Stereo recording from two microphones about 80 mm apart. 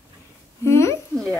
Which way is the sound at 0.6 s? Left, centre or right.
Left.